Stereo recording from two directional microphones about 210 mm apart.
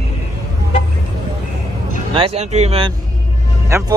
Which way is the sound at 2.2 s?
30° right (ahead or behind).